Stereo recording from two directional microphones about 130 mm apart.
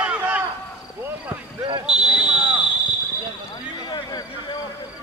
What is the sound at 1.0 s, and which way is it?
Basketball bounce, 15° right (ahead or behind).